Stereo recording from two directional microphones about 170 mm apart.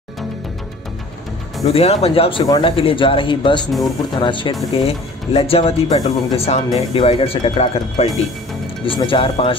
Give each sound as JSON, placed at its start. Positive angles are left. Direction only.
{"t": 1.7, "sound": "speech", "side_deg": 35}